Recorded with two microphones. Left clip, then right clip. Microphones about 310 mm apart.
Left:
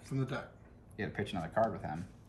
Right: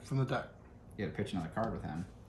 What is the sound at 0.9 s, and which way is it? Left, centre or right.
Speech, centre.